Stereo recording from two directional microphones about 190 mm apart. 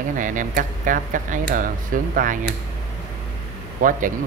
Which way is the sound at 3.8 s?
45° right (ahead or behind).